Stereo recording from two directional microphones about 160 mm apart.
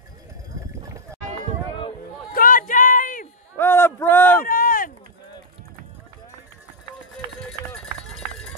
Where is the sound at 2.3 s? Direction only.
60° left (ahead or behind).